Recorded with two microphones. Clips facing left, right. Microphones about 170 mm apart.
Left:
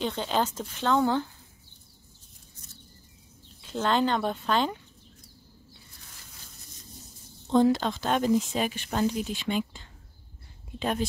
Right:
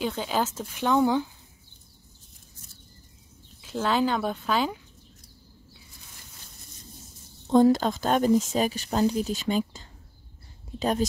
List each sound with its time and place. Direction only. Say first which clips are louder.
0.0 s speech: even; 5° right (ahead or behind)
3.6 s speech: right 1 dB; 5° right (ahead or behind)
7.5 s a woman's voice: right 3 dB; 45° right (ahead or behind)